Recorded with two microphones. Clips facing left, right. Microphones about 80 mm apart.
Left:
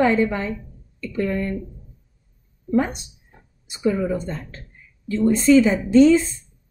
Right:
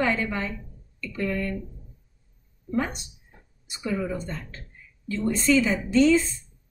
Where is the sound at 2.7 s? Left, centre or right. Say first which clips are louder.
Left 7 dB; left.